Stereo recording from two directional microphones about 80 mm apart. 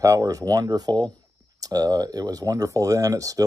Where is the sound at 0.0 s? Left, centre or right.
Right.